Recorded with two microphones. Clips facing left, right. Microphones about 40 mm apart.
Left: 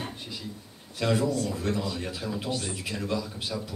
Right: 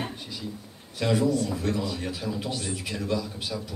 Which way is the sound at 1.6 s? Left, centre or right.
Centre.